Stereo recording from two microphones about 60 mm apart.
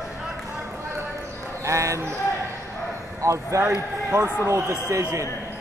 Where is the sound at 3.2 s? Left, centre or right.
Right.